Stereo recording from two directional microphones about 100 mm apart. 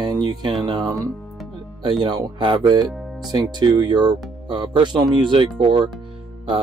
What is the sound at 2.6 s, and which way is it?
Speech, 40° right (ahead or behind).